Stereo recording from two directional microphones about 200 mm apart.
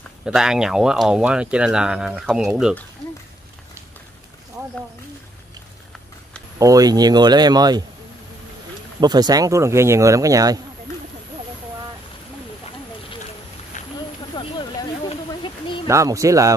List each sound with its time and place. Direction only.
0.2 s speech: 5° right (ahead or behind)
6.6 s speech: 20° right (ahead or behind)
9.0 s speech: 20° right (ahead or behind)
13.8 s a sound: 40° left (ahead or behind)
14.3 s a sound: 25° left (ahead or behind)
15.9 s speech: 15° right (ahead or behind)